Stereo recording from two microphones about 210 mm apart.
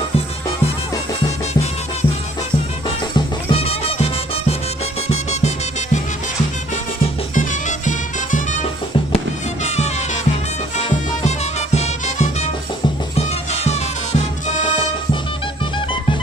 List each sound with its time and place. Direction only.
1.5 s music: 30° left (ahead or behind)
3.2 s music: 25° left (ahead or behind)
7.0 s music: 35° left (ahead or behind)
10.9 s music: 30° left (ahead or behind)